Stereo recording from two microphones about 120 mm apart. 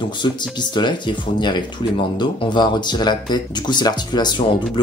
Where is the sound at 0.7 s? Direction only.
40° left (ahead or behind).